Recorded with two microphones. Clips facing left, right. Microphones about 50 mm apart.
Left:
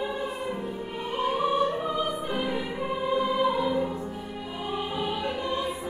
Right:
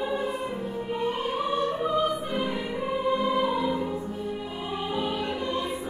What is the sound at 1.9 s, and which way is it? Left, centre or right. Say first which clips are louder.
Music: right 3 dB; centre.